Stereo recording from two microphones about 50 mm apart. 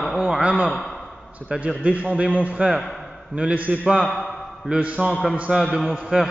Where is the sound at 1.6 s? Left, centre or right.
Right.